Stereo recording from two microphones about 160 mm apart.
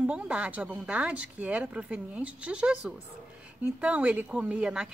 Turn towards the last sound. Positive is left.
turn(degrees=-5)  # may be behind; listen again after turning